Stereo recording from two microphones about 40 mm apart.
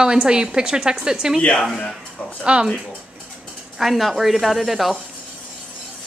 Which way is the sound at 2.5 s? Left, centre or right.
Right.